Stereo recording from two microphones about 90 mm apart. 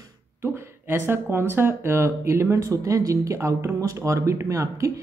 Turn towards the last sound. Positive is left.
turn(degrees=-35)  # may be behind; listen again after turning